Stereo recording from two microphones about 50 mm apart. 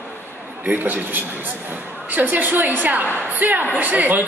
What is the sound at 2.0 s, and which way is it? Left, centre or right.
A woman's voice, right.